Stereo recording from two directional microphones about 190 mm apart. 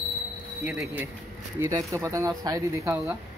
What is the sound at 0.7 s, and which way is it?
Speech, 5° right (ahead or behind).